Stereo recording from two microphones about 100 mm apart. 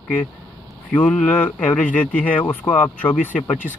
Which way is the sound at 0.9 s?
15° left (ahead or behind).